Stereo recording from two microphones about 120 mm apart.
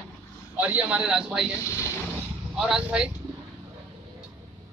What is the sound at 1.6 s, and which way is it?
Speech, 25° left (ahead or behind).